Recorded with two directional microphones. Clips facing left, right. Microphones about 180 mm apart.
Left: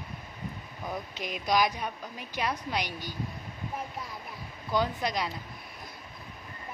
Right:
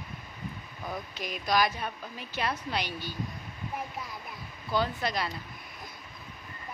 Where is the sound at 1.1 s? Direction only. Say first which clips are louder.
Left 1 dB; 20° left (ahead or behind).